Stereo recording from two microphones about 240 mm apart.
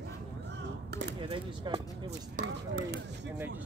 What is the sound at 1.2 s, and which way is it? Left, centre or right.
Speech, centre.